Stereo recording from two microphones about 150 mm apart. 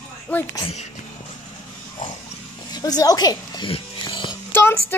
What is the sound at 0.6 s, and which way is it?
Speech, 45° left (ahead or behind).